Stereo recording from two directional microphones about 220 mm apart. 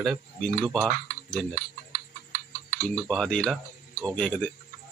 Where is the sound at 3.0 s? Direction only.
5° left (ahead or behind).